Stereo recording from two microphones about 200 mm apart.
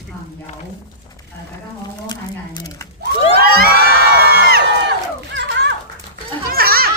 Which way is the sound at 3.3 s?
50° right (ahead or behind).